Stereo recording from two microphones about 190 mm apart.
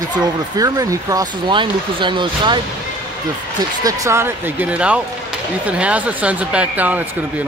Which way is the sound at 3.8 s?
20° right (ahead or behind).